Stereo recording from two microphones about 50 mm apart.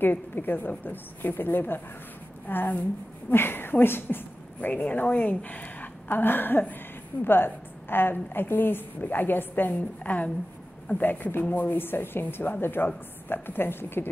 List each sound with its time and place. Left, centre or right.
0.0 s a woman's voice: left
4.6 s a woman's voice: left
5.0 s a woman's voice: left
11.7 s a woman's voice: left